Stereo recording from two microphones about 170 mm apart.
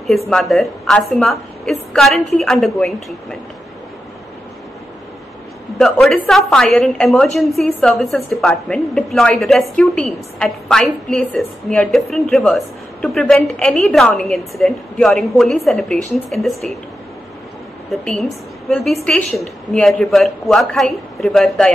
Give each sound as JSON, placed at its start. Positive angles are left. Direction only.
{"t": 0.3, "sound": "a woman's voice", "side_deg": 0}
{"t": 5.8, "sound": "a woman's voice", "side_deg": 0}
{"t": 19.0, "sound": "a woman's voice", "side_deg": 5}